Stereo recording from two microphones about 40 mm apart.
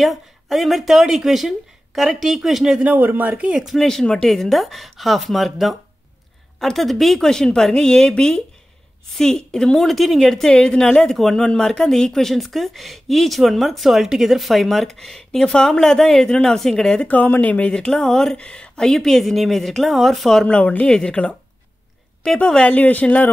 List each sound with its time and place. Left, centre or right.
0.0 s speech: centre
3.0 s speech: right
3.6 s speech: centre
7.2 s speech: centre
9.1 s speech: centre
9.8 s speech: centre
10.8 s speech: centre
17.1 s speech: left
17.7 s speech: centre
18.4 s speech: left
18.8 s speech: centre
20.4 s speech: left
22.4 s speech: left
22.7 s speech: left